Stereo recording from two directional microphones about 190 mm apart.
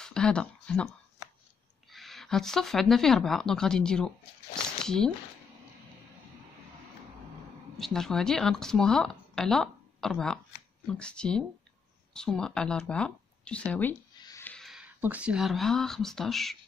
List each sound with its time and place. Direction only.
0.0 s speech: 5° left (ahead or behind)
1.9 s speech: centre (ahead or behind)
7.7 s speech: centre (ahead or behind)
14.1 s a sound: 20° left (ahead or behind)
14.4 s speech: 5° left (ahead or behind)